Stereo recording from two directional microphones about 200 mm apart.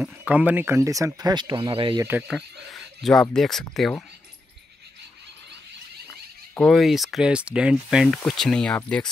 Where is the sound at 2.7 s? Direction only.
Centre (ahead or behind).